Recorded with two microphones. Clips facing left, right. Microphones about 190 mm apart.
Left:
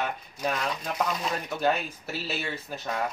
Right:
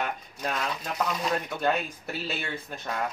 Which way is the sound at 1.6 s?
5° left (ahead or behind).